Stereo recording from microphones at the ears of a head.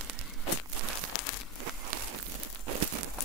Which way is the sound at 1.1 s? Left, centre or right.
Left.